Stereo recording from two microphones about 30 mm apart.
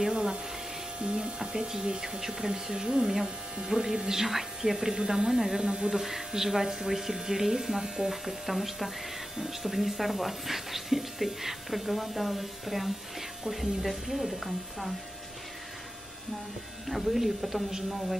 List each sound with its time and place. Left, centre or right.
0.1 s a sound: right
1.0 s speech: right
4.1 s speech: centre
5.6 s speech: right
5.9 s speech: centre
8.1 s speech: centre
16.9 s speech: centre